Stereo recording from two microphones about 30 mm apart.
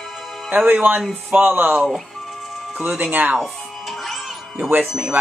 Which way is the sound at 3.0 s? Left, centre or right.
Right.